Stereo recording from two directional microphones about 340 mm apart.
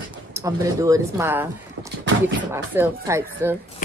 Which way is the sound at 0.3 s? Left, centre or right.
Centre.